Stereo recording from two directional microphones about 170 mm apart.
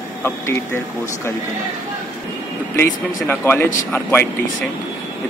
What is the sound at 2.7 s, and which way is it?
Speech, 10° left (ahead or behind).